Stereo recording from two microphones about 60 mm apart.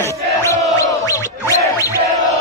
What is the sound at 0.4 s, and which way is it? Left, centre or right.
Music, left.